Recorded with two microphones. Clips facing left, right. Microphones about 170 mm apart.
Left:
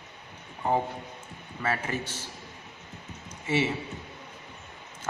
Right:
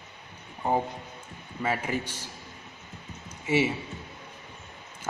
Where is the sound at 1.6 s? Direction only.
10° right (ahead or behind).